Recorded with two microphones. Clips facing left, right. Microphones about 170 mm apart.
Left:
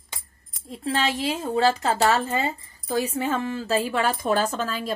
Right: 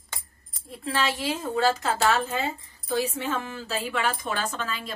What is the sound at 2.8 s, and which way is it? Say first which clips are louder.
A woman's voice: left 2 dB; 35° left (ahead or behind).